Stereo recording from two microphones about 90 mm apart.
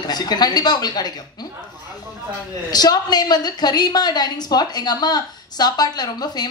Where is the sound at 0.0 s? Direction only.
50° left (ahead or behind).